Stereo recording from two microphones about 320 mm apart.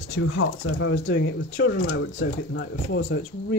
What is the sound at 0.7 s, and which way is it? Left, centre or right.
Speech, left.